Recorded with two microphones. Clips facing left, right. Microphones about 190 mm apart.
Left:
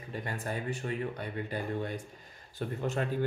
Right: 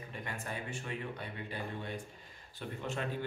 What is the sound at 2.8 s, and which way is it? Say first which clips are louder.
Speech: left 6 dB; 45° left (ahead or behind).